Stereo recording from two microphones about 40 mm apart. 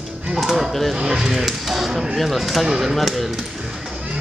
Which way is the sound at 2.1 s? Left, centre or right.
Centre.